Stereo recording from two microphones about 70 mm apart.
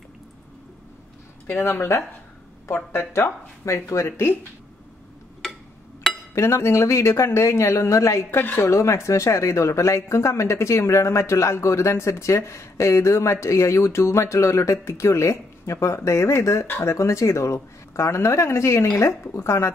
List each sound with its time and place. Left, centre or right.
1.5 s speech: left
3.6 s speech: left
6.3 s speech: left
8.7 s speech: left